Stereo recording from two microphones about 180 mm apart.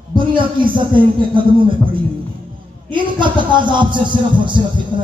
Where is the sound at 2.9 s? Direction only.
25° right (ahead or behind).